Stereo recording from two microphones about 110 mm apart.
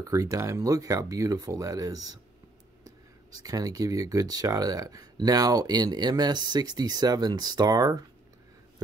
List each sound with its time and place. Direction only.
0.0 s speech: 30° right (ahead or behind)
3.3 s speech: 35° right (ahead or behind)